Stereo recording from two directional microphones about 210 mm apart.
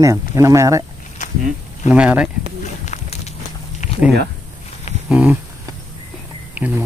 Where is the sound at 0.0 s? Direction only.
15° right (ahead or behind).